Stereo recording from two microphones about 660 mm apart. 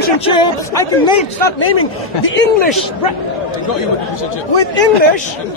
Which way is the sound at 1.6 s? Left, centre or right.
Centre.